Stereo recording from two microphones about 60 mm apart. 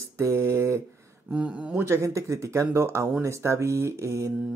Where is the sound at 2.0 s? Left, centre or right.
Right.